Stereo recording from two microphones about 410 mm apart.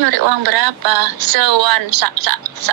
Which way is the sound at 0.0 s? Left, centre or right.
Right.